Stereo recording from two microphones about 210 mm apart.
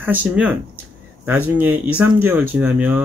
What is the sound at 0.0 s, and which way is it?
Speech, 10° right (ahead or behind).